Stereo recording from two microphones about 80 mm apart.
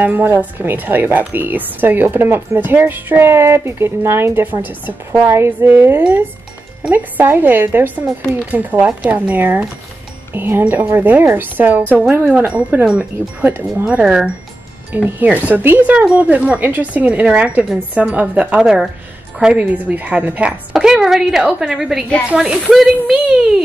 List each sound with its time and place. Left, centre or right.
0.0 s a woman's voice: right
13.5 s a woman's voice: right
13.8 s a woman's voice: centre